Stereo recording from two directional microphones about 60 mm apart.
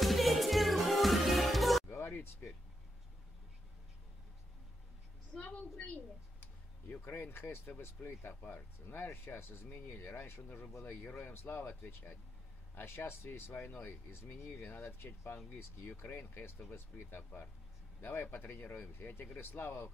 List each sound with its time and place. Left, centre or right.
0.0 s music: centre
1.9 s a sound: left
5.4 s a woman's voice: left
6.9 s speech: left
11.0 s speech: left
14.8 s speech: left